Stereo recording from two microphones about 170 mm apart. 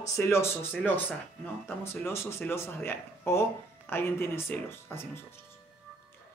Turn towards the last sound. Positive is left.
turn(degrees=15)  # may be behind; listen again after turning